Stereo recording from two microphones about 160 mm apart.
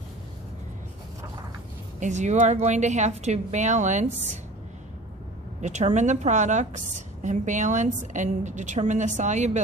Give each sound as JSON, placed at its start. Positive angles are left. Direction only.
{"t": 2.0, "sound": "a woman's voice", "side_deg": -50}
{"t": 5.6, "sound": "a woman's voice", "side_deg": -45}